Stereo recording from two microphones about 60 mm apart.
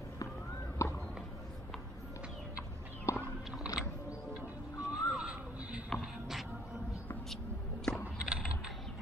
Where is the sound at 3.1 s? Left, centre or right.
Left.